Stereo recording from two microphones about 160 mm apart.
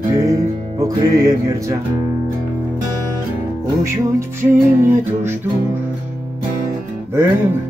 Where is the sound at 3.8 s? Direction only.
15° right (ahead or behind).